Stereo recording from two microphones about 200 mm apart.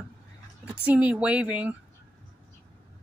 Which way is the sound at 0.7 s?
5° right (ahead or behind).